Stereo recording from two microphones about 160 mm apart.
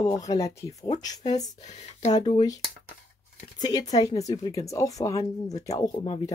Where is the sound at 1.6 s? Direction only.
45° left (ahead or behind).